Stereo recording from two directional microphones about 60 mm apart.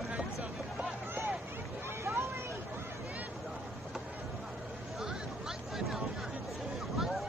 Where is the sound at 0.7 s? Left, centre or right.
Right.